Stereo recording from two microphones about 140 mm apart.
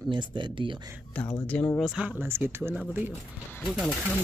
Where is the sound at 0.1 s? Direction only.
35° right (ahead or behind).